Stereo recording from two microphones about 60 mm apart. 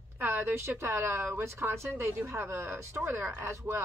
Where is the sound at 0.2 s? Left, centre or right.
Right.